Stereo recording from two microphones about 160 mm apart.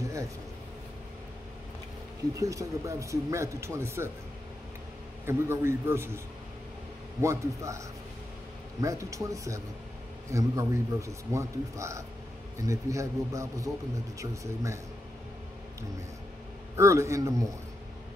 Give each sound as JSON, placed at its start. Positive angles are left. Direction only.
{"t": 2.3, "sound": "speech", "side_deg": -20}
{"t": 5.2, "sound": "a man's voice", "side_deg": -15}
{"t": 8.8, "sound": "speech", "side_deg": -20}
{"t": 16.7, "sound": "speech", "side_deg": -15}